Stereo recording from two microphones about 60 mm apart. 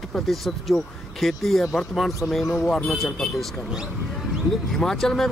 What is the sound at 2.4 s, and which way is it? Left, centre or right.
Speech, left.